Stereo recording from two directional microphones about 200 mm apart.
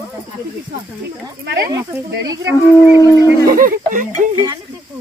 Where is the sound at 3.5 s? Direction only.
45° right (ahead or behind).